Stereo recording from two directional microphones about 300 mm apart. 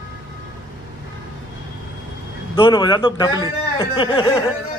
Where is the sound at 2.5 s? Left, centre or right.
Centre.